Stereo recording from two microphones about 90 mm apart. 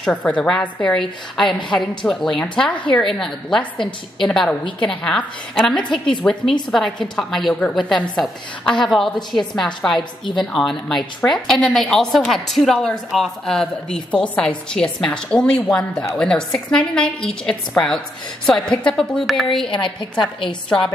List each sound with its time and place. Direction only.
0.0 s a woman's voice: 15° left (ahead or behind)
19.7 s a woman's voice: 65° left (ahead or behind)